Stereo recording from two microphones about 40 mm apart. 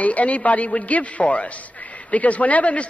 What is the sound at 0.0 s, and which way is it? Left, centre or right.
A man's voice, left.